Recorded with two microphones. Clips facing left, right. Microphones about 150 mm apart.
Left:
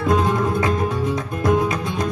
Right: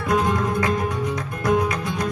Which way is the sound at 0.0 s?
25° left (ahead or behind).